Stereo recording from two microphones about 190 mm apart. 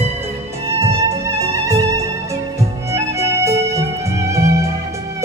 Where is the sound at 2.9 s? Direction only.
15° right (ahead or behind).